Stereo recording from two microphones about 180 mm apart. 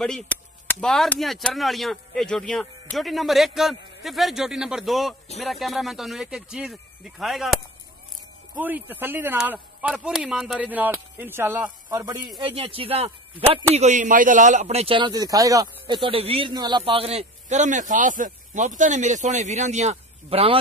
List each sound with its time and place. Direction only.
0.0 s speech: 5° left (ahead or behind); by 13.6 s 30° right (ahead or behind)
13.7 s speech: 45° right (ahead or behind)